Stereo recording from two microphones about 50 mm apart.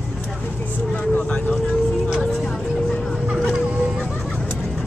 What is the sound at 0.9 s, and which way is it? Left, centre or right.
Vehicle, left.